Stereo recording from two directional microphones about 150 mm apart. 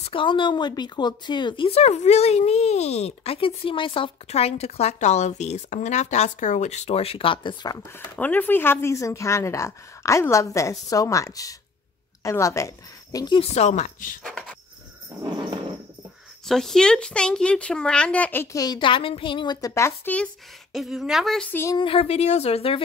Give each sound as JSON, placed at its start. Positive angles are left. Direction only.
{"t": 0.0, "sound": "a woman's voice", "side_deg": 35}
{"t": 8.0, "sound": "a woman's voice", "side_deg": 10}
{"t": 13.4, "sound": "a woman's voice", "side_deg": 45}
{"t": 14.2, "sound": "a sound", "side_deg": 5}
{"t": 15.2, "sound": "a sound", "side_deg": -30}
{"t": 16.4, "sound": "speech", "side_deg": 5}
{"t": 20.7, "sound": "speech", "side_deg": 0}
{"t": 21.7, "sound": "a woman's voice", "side_deg": 40}